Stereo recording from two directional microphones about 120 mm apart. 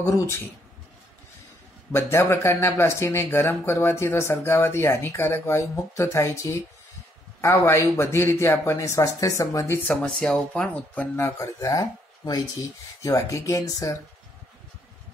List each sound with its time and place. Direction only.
0.0 s speech: 25° left (ahead or behind)
1.9 s speech: 20° left (ahead or behind)
9.8 s speech: 5° left (ahead or behind)
11.2 s speech: 25° left (ahead or behind)
13.0 s speech: 30° left (ahead or behind)